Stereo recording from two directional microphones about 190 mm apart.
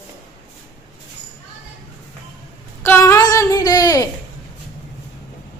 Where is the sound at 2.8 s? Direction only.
10° left (ahead or behind).